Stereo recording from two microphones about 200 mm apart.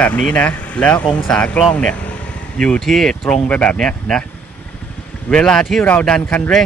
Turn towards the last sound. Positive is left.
turn(degrees=5)  # may be behind; listen again after turning